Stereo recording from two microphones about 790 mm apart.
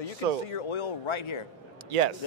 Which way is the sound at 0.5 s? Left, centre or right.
Left.